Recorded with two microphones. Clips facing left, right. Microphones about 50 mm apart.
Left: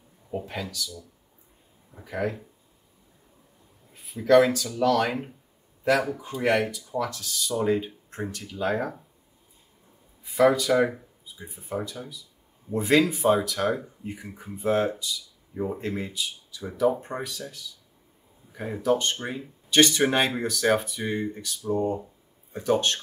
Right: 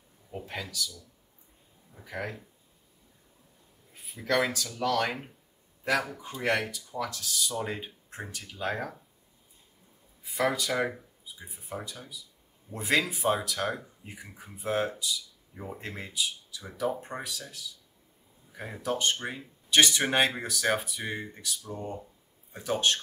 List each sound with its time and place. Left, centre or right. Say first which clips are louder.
0.5 s speech: left 2 dB; centre
2.0 s speech: left 7 dB; centre
3.9 s speech: left 10 dB; centre
10.2 s speech: left 8 dB; centre